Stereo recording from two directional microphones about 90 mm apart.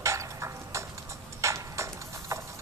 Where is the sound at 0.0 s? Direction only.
35° right (ahead or behind).